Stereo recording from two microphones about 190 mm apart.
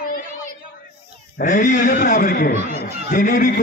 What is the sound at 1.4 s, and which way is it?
A man's voice, 45° left (ahead or behind).